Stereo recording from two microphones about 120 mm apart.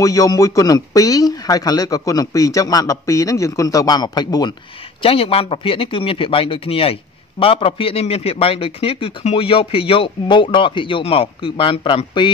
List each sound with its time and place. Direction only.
0.0 s a man's voice: 30° left (ahead or behind)
5.0 s speech: 50° left (ahead or behind)